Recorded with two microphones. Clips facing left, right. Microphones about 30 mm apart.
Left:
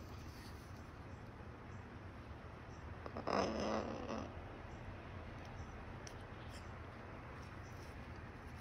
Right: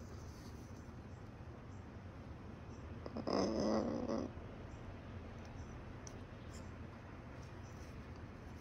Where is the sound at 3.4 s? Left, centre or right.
Left.